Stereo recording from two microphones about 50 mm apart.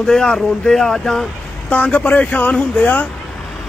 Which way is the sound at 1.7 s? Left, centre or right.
Left.